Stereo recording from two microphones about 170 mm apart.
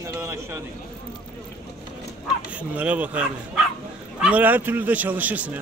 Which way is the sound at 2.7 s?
10° right (ahead or behind).